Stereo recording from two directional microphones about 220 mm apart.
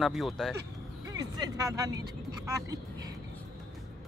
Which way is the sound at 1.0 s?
15° right (ahead or behind).